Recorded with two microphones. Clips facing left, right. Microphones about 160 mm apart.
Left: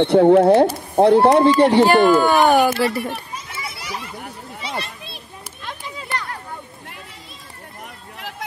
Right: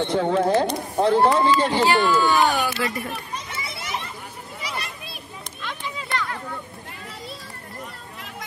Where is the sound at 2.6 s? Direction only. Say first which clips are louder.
Left 7 dB; 45° left (ahead or behind).